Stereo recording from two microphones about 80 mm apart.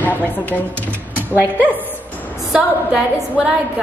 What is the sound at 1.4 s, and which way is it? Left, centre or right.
A woman's voice, right.